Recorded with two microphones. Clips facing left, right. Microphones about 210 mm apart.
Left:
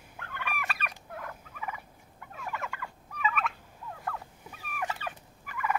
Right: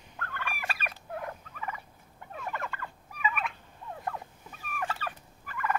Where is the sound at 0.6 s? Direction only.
30° right (ahead or behind).